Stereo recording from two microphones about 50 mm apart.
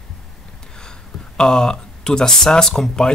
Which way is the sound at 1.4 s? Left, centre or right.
Centre.